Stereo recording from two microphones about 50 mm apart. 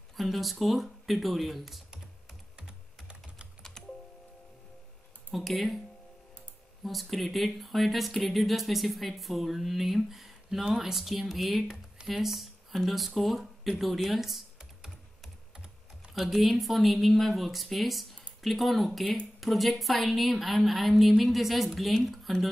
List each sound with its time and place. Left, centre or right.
0.2 s speech: centre
2.5 s typing: centre
3.8 s music: centre
5.3 s speech: centre
6.8 s speech: centre